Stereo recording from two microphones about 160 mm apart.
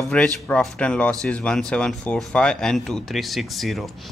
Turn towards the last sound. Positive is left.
turn(degrees=0)  # may be behind; listen again after turning